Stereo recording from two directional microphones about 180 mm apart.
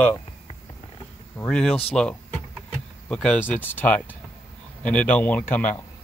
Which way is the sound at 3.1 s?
5° left (ahead or behind).